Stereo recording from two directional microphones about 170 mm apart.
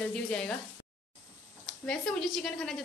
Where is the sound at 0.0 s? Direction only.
5° left (ahead or behind).